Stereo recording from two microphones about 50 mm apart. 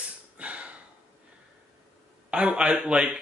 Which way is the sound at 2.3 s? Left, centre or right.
Centre.